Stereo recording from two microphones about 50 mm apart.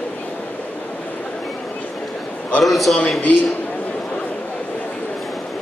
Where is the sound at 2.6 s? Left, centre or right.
Centre.